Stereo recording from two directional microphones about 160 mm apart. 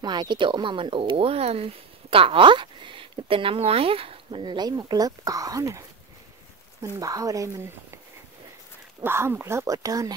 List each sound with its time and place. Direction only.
0.0 s speech: 25° right (ahead or behind)
9.0 s speech: 15° right (ahead or behind)